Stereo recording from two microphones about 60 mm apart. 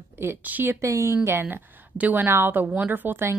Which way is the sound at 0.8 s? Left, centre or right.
Right.